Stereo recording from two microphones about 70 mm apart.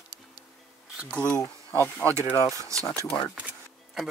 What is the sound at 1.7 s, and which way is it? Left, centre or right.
Speech, left.